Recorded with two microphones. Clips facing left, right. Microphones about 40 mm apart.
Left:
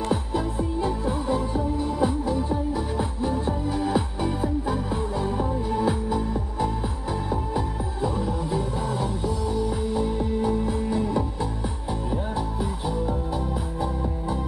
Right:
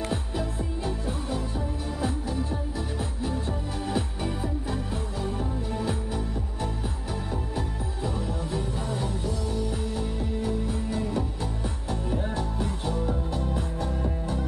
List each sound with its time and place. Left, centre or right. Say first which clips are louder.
0.1 s music: left 5 dB; left
5.2 s music: left 5 dB; centre
7.5 s music: left 5 dB; centre
10.1 s music: left 5 dB; left
12.4 s music: left 3 dB; centre